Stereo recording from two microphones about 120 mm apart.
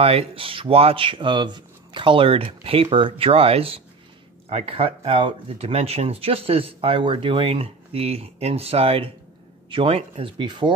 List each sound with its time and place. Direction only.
0.0 s speech: 55° right (ahead or behind)